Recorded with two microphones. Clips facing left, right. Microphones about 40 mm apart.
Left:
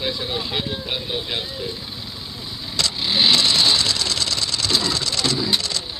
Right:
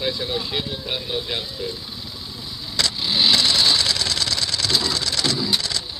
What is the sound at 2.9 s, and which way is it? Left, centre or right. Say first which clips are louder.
Sewing machine: left 2 dB; centre.